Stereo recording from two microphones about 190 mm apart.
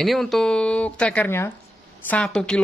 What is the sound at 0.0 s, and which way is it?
Speech, centre (ahead or behind).